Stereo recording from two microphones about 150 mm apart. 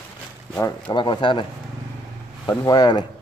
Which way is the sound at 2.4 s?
25° left (ahead or behind).